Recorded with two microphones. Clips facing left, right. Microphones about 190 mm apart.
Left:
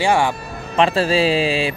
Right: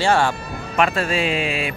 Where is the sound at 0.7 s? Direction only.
30° left (ahead or behind).